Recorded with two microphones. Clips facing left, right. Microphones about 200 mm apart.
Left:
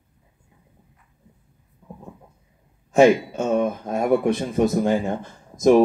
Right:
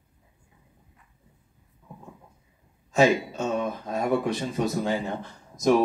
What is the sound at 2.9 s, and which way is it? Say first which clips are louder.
Speech: left 6 dB; 60° left (ahead or behind).